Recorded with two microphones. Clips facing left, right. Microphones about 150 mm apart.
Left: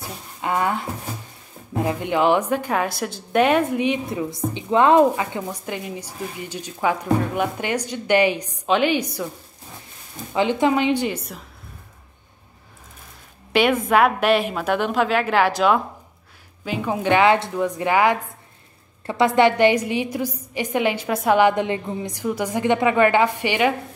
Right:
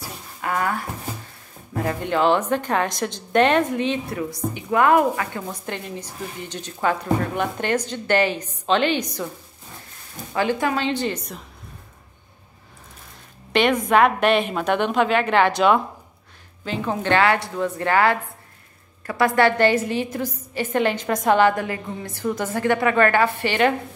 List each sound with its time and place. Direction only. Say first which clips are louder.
0.4 s a woman's voice: left 2 dB; 20° left (ahead or behind)
10.3 s a woman's voice: left 3 dB; 20° left (ahead or behind)
13.5 s a woman's voice: even; 5° left (ahead or behind)